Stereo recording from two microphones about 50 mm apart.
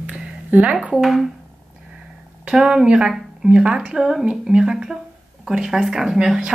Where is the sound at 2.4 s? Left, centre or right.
Centre.